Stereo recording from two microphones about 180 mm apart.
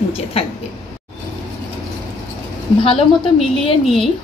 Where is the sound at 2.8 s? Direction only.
30° left (ahead or behind).